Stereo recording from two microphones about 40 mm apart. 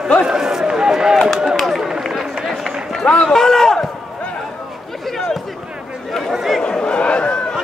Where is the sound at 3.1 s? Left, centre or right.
Centre.